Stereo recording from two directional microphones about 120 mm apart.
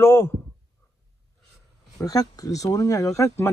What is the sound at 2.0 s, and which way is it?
Speech, 30° left (ahead or behind).